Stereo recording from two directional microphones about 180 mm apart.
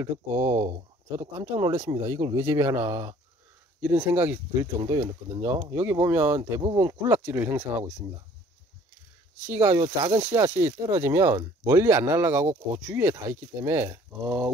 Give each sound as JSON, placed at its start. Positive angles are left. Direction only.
{"t": 0.0, "sound": "speech", "side_deg": -15}
{"t": 9.5, "sound": "speech", "side_deg": -15}